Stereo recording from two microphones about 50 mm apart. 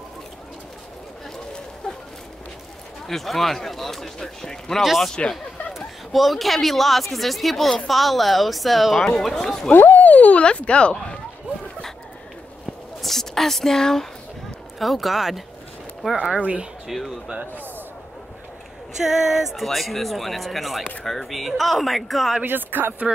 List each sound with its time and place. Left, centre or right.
3.1 s speech: centre
5.2 s speech: left
5.7 s speech: centre
9.7 s a sound: left
10.4 s speech: left
13.0 s speech: centre
14.8 s speech: centre
16.2 s speech: centre
16.8 s speech: centre
19.0 s speech: centre
22.4 s speech: right